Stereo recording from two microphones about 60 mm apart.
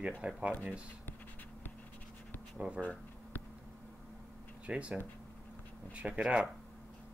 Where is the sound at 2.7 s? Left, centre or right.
Left.